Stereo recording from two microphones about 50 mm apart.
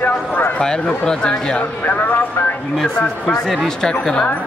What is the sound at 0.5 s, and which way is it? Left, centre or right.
Speech, centre.